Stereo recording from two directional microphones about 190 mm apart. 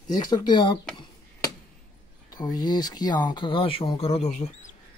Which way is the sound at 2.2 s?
20° left (ahead or behind).